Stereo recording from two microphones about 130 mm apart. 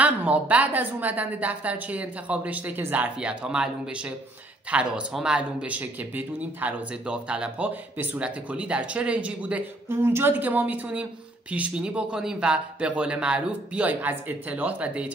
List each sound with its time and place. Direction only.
0.0 s speech: 10° right (ahead or behind)